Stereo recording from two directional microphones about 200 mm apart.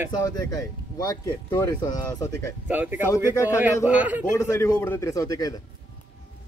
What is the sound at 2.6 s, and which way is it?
Speech, 10° right (ahead or behind).